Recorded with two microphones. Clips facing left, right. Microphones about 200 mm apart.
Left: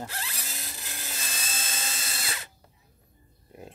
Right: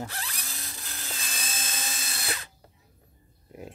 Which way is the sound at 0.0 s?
10° left (ahead or behind).